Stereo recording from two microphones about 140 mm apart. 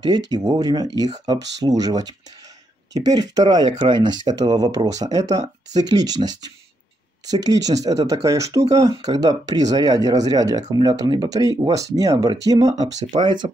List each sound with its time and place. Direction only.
0.0 s speech: 30° right (ahead or behind)